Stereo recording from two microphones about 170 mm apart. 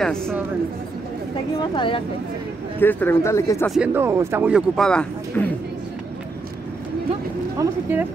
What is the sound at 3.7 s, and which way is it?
Speech, 10° right (ahead or behind).